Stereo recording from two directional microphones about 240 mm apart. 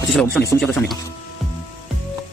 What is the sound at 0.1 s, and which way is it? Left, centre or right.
Speech, centre.